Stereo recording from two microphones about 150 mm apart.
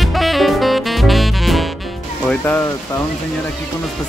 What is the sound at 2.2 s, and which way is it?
Speech, 10° left (ahead or behind).